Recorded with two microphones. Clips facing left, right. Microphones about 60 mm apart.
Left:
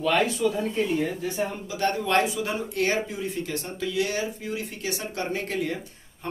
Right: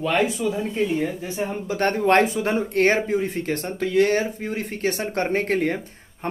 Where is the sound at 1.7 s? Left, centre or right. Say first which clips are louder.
Right 7 dB; right.